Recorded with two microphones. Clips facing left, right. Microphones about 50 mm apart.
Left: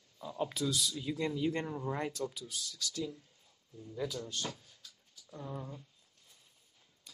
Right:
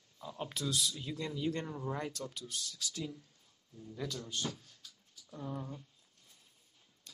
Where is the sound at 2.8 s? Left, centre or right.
Right.